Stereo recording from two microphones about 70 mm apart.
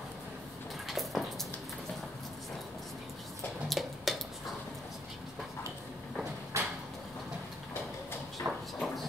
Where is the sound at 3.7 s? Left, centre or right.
Centre.